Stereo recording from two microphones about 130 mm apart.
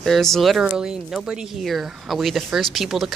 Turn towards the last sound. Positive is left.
turn(degrees=0)  # may be behind; listen again after turning